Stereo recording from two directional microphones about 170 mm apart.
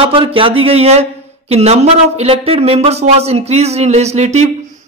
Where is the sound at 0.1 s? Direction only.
30° right (ahead or behind).